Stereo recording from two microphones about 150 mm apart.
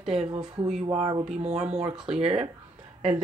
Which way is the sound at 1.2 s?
45° right (ahead or behind).